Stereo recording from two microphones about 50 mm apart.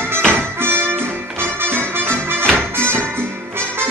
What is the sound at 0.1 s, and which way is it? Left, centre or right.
Music, right.